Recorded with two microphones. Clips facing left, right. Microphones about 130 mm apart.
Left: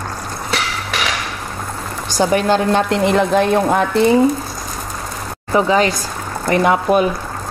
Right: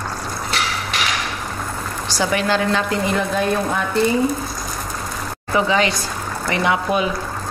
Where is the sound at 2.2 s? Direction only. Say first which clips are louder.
Left 5 dB; 45° left (ahead or behind).